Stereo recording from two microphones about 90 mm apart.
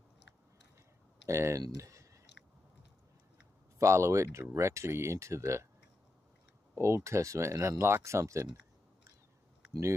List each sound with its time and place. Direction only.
1.3 s speech: 30° right (ahead or behind)
1.8 s clicking: 35° right (ahead or behind)
3.8 s speech: 30° right (ahead or behind)
6.7 s speech: 30° right (ahead or behind)